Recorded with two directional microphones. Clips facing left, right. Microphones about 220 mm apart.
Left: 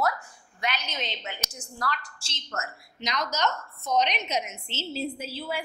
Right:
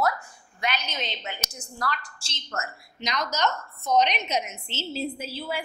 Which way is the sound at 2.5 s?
25° right (ahead or behind).